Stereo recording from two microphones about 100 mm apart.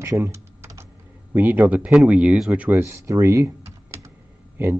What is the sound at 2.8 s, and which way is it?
Speech, 25° right (ahead or behind).